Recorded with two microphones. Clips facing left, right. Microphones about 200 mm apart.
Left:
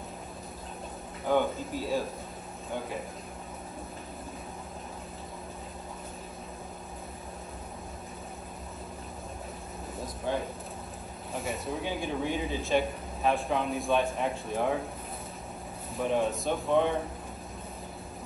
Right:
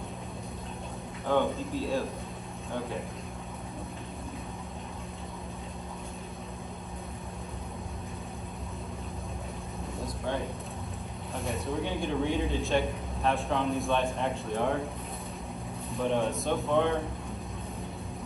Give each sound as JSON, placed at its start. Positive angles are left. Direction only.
{"t": 1.2, "sound": "a man's voice", "side_deg": 5}
{"t": 9.9, "sound": "a sound", "side_deg": 0}
{"t": 11.3, "sound": "a man's voice", "side_deg": 0}
{"t": 15.9, "sound": "a man's voice", "side_deg": 0}